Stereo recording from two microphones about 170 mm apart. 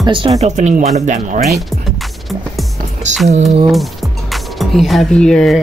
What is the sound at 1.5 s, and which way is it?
Music, centre (ahead or behind).